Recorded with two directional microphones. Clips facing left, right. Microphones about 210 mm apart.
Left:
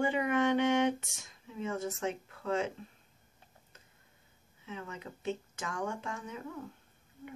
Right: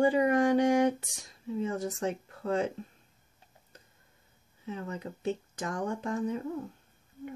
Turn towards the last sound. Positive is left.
turn(degrees=-35)  # may be behind; listen again after turning